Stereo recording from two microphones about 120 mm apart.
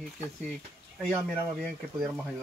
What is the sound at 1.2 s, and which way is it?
Speech, 5° left (ahead or behind).